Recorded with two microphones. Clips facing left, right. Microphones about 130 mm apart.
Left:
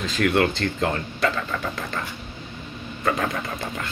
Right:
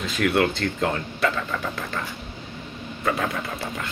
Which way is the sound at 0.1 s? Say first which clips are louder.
Left 1 dB; 5° right (ahead or behind).